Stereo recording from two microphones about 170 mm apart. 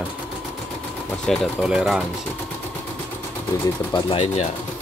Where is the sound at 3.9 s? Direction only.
35° left (ahead or behind).